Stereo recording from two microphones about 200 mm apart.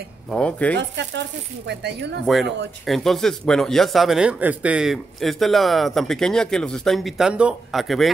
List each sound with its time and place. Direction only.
0.3 s speech: 5° left (ahead or behind)
0.7 s speech: 60° right (ahead or behind)
2.8 s speech: centre (ahead or behind)